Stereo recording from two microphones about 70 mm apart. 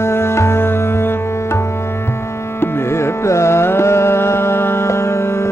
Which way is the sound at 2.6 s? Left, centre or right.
Left.